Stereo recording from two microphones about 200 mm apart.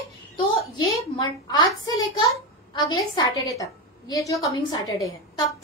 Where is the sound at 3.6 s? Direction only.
15° left (ahead or behind).